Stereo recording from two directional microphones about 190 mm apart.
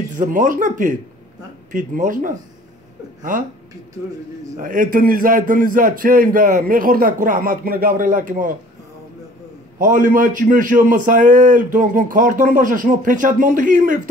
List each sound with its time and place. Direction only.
0.2 s a man's voice: 45° right (ahead or behind)
4.6 s a man's voice: 45° right (ahead or behind)
9.8 s a man's voice: 45° right (ahead or behind)